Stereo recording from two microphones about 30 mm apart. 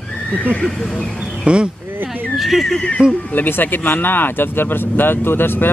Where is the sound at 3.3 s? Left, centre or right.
Left.